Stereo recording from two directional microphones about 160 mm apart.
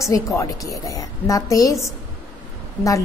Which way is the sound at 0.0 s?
20° left (ahead or behind).